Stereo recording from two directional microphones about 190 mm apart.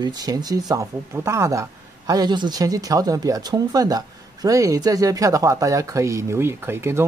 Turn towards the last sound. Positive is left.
turn(degrees=-15)  # may be behind; listen again after turning